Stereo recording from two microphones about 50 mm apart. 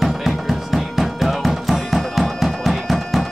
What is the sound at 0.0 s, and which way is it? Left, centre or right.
Music, centre.